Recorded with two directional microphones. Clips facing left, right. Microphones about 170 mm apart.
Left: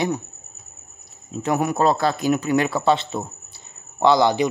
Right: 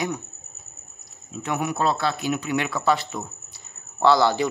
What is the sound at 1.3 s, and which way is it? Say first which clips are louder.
A man's voice: left 5 dB; 35° left (ahead or behind).